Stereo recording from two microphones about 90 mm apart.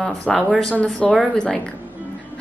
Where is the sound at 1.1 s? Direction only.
5° left (ahead or behind).